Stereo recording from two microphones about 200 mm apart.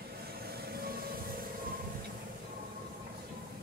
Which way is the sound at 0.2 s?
50° right (ahead or behind).